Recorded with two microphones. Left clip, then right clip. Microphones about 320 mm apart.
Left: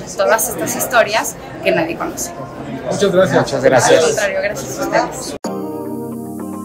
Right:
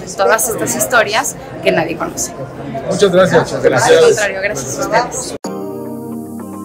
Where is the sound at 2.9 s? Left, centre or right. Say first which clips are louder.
Right 3 dB; right.